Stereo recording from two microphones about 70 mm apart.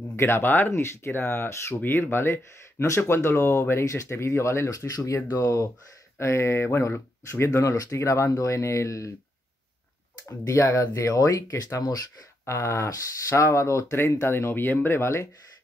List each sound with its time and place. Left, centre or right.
0.1 s speech: left
4.8 s speech: left
7.7 s speech: left
10.2 s speech: left
12.4 s speech: left